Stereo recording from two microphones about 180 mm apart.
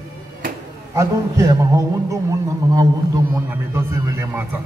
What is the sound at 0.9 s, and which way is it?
A man's voice, 15° right (ahead or behind).